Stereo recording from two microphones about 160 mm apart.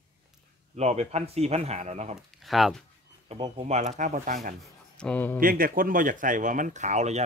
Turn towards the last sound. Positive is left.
turn(degrees=-45)  # may be behind; listen again after turning